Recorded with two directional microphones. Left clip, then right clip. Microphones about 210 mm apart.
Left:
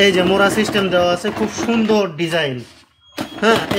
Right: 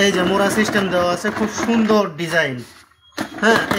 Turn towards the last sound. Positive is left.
turn(degrees=20)  # may be behind; listen again after turning